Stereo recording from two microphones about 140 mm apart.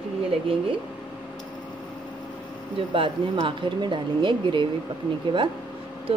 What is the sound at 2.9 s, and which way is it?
Speech, 35° right (ahead or behind).